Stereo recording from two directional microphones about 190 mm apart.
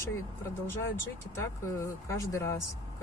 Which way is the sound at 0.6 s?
10° left (ahead or behind).